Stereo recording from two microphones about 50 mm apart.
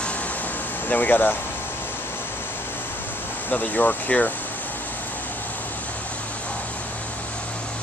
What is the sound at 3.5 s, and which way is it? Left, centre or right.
Speech, left.